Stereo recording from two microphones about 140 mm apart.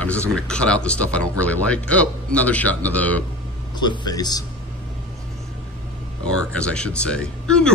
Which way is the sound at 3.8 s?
30° left (ahead or behind).